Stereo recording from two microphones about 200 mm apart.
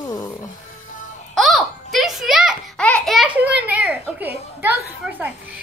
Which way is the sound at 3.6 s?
5° right (ahead or behind).